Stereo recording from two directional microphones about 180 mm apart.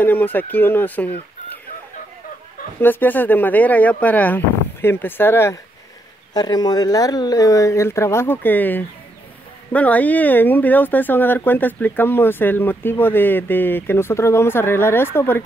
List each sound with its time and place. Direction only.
0.0 s speech: 10° left (ahead or behind)
2.8 s speech: 10° left (ahead or behind)